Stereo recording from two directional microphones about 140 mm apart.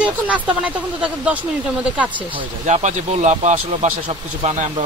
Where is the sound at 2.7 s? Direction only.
55° right (ahead or behind).